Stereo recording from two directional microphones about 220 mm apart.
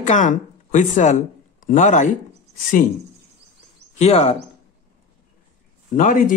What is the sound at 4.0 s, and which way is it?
Speech, 30° left (ahead or behind).